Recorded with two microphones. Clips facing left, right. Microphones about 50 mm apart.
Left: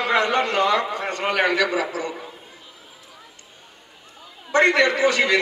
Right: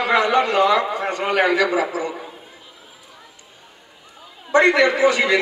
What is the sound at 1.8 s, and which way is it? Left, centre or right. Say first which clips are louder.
Speech: right 3 dB; centre.